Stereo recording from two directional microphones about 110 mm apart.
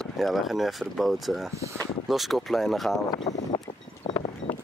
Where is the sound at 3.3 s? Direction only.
30° left (ahead or behind).